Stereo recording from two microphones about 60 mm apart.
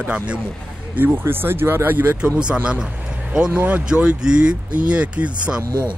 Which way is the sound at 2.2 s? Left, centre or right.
Centre.